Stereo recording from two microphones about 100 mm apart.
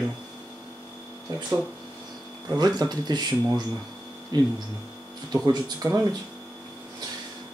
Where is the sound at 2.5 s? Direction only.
40° right (ahead or behind).